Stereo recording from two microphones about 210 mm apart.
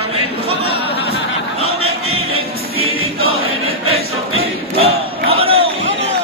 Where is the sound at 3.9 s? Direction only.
30° right (ahead or behind).